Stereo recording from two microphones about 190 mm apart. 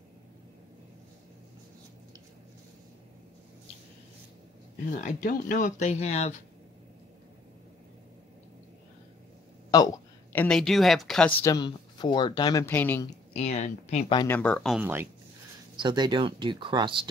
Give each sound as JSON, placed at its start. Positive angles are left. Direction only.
{"t": 5.0, "sound": "speech", "side_deg": 45}
{"t": 9.7, "sound": "speech", "side_deg": 20}
{"t": 11.4, "sound": "speech", "side_deg": 20}
{"t": 13.3, "sound": "speech", "side_deg": 35}
{"t": 14.1, "sound": "speech", "side_deg": 10}
{"t": 14.8, "sound": "speech", "side_deg": -10}
{"t": 15.8, "sound": "speech", "side_deg": -25}